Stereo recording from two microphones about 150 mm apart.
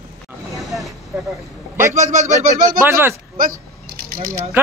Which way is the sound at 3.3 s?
70° right (ahead or behind).